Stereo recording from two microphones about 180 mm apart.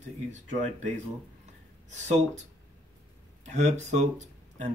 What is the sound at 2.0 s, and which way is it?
Speech, 40° right (ahead or behind).